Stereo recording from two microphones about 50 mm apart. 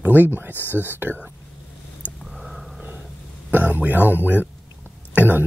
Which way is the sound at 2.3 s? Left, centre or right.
Centre.